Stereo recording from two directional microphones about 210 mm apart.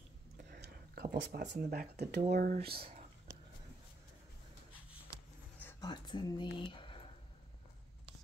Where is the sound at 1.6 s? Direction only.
45° right (ahead or behind).